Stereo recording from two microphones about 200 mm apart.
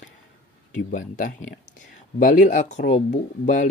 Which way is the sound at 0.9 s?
40° left (ahead or behind).